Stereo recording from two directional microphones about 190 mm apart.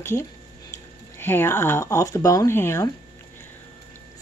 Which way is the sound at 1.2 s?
10° left (ahead or behind).